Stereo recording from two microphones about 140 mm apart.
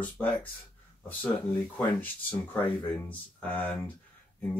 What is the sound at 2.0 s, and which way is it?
Speech, 10° left (ahead or behind).